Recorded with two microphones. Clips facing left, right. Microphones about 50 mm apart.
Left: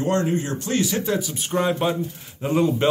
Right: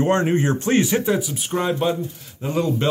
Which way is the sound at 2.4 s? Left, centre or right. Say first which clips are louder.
Left 2 dB; centre.